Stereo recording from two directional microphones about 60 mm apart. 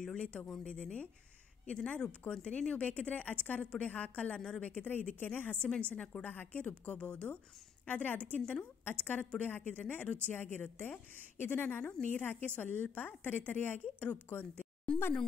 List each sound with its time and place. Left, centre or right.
0.0 s a woman's voice: centre